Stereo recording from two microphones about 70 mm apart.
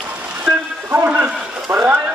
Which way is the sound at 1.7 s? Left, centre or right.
Right.